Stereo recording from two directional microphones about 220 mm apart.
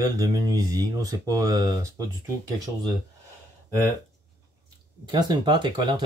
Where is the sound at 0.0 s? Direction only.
15° right (ahead or behind).